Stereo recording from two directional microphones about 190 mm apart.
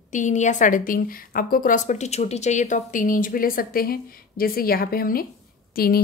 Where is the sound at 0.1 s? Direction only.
40° left (ahead or behind).